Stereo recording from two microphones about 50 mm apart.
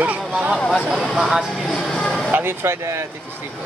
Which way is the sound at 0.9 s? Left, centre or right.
Centre.